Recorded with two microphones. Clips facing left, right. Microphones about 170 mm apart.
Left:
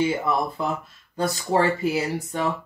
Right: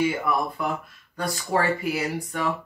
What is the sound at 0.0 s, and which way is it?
Speech, 25° left (ahead or behind).